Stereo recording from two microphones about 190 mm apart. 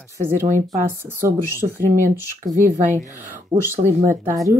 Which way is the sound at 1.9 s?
45° right (ahead or behind).